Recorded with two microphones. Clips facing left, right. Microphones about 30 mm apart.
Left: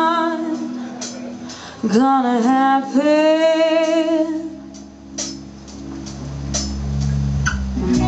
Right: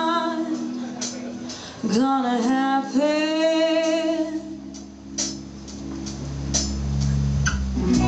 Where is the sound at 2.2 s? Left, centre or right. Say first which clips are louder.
Left 6 dB; centre.